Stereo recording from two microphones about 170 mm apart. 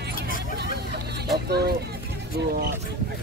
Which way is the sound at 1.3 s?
70° right (ahead or behind).